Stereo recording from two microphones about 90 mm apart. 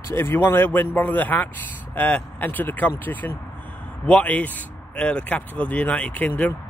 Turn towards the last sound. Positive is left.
turn(degrees=15)  # may be behind; listen again after turning